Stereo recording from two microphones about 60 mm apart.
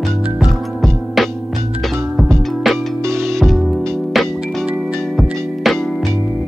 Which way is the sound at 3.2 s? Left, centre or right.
Centre.